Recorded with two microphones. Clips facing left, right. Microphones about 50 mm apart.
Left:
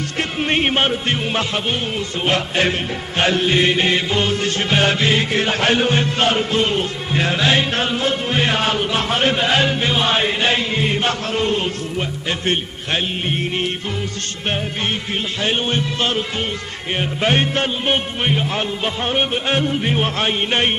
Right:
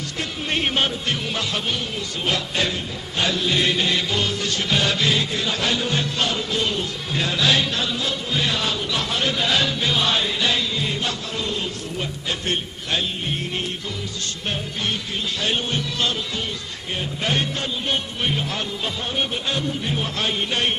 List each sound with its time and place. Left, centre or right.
0.2 s music: left
15.4 s music: left
19.0 s music: left